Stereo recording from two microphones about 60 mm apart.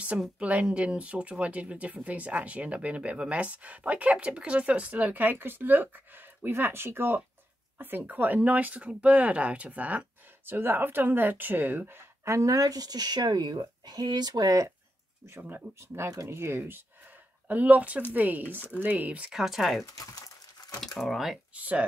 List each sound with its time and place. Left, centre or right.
0.4 s speech: right
7.7 s a sound: right
8.1 s speech: right
10.4 s speech: right
12.5 s speech: right
14.3 s speech: right
15.8 s speech: right
19.3 s speech: centre
21.5 s speech: right